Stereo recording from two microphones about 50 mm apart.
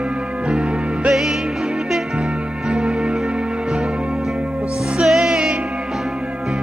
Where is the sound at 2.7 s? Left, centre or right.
Centre.